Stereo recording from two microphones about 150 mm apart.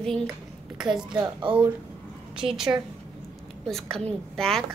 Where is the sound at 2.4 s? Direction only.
40° right (ahead or behind).